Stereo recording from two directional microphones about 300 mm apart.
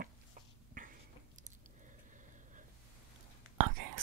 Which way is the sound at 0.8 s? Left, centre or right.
Right.